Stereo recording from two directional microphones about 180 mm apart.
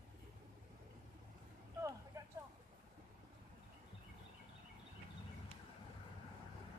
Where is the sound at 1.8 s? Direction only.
20° right (ahead or behind).